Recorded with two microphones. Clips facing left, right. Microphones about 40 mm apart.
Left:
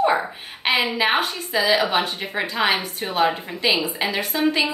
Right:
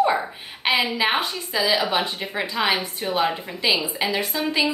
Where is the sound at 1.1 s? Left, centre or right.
Left.